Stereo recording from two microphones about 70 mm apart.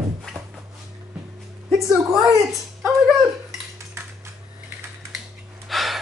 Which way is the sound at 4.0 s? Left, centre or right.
Right.